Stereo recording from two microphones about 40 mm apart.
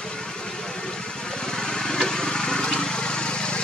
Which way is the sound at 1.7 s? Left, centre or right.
Centre.